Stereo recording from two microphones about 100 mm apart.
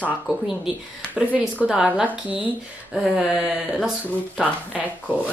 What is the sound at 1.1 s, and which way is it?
Speech, 15° right (ahead or behind).